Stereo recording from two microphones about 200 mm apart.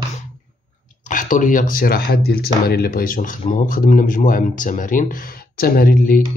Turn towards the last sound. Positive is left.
turn(degrees=45)  # may be behind; listen again after turning